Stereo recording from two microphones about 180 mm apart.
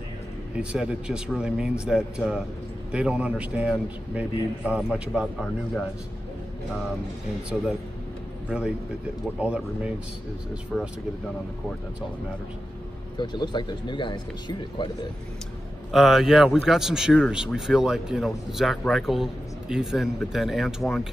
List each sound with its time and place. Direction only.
0.6 s speech: 5° right (ahead or behind)
8.5 s speech: 5° right (ahead or behind)
13.2 s speech: 25° left (ahead or behind)
15.9 s speech: centre (ahead or behind)